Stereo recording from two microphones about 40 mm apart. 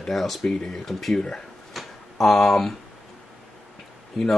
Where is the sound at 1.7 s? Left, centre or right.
Centre.